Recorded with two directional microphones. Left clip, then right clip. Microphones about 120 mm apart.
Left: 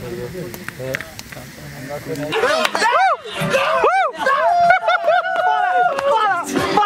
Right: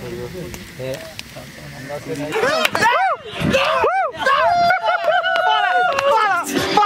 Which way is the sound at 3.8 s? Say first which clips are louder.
Left 2 dB; 10° left (ahead or behind).